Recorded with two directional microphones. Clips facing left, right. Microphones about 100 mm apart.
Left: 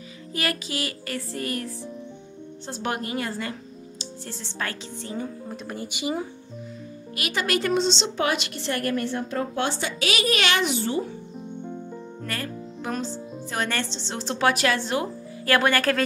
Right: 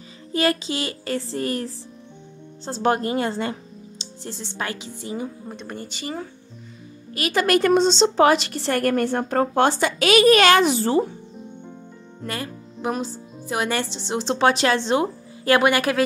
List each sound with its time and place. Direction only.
0.3 s music: 30° right (ahead or behind)
2.6 s a woman's voice: 35° right (ahead or behind); by 5.6 s 10° right (ahead or behind)
5.6 s speech: 5° left (ahead or behind)
7.2 s a woman's voice: 45° right (ahead or behind)
12.3 s speech: 20° right (ahead or behind)